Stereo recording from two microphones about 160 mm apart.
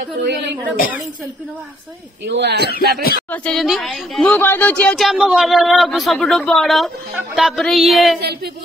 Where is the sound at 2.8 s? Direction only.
70° right (ahead or behind).